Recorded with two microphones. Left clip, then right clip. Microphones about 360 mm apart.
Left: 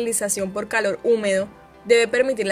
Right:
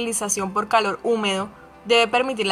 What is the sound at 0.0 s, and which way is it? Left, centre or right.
Speech, centre.